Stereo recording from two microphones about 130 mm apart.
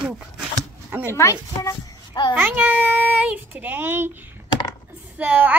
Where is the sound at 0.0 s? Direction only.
10° right (ahead or behind).